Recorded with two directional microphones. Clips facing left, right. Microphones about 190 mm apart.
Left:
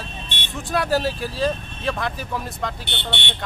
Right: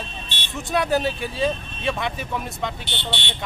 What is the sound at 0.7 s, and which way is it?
Speech, centre (ahead or behind).